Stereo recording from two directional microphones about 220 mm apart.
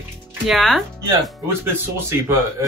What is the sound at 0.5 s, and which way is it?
Speech, centre (ahead or behind).